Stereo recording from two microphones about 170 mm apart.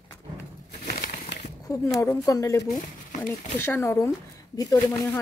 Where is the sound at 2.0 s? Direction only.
20° left (ahead or behind).